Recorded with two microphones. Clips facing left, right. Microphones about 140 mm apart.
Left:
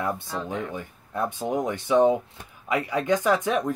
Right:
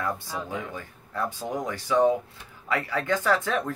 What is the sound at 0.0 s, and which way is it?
Speech, 20° left (ahead or behind).